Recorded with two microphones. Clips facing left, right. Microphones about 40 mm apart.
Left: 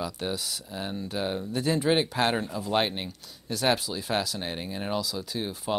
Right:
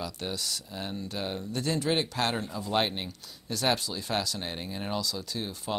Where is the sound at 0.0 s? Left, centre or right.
Centre.